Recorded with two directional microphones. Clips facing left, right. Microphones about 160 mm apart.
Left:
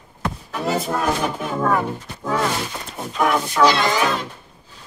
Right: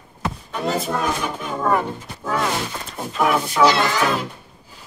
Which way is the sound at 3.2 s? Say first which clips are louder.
Even; 5° right (ahead or behind).